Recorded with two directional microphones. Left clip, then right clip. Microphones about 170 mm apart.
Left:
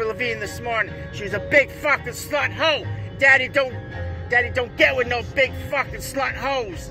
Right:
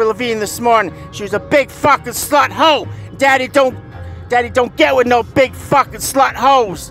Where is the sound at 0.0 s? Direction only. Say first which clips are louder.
Right 9 dB; 40° right (ahead or behind).